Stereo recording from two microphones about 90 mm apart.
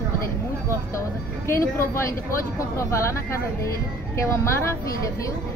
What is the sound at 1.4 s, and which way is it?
Speech, 30° left (ahead or behind).